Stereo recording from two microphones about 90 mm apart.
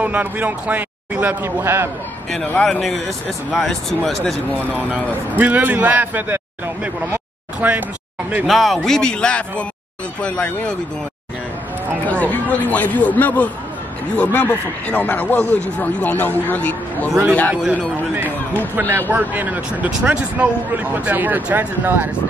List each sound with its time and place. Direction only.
0.0 s speech: 20° right (ahead or behind)
2.4 s speech: 15° left (ahead or behind)
2.7 s speech: centre (ahead or behind)
5.0 s speech: 15° left (ahead or behind)
5.4 s a man's voice: 20° right (ahead or behind)
8.5 s speech: centre (ahead or behind)
12.1 s speech: 15° left (ahead or behind)
18.1 s a sound: 20° right (ahead or behind)
18.8 s a man's voice: 20° right (ahead or behind)